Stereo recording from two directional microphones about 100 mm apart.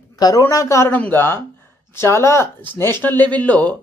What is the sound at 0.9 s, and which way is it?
Speech, 20° left (ahead or behind).